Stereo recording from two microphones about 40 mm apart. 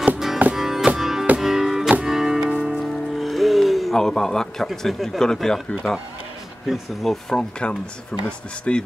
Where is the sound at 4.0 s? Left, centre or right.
Centre.